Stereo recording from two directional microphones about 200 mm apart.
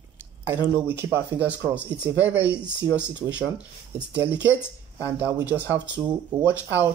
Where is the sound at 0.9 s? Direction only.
10° right (ahead or behind).